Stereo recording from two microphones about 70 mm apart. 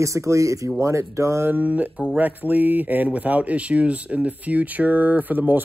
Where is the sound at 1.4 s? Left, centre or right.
Right.